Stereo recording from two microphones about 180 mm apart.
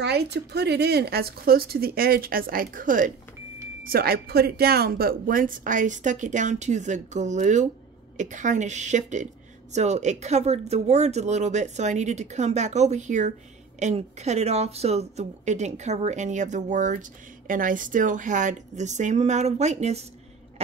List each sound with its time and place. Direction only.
0.0 s a woman's voice: 65° right (ahead or behind); by 20.1 s 35° right (ahead or behind)